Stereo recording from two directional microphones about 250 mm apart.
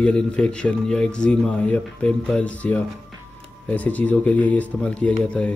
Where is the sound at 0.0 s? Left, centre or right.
Centre.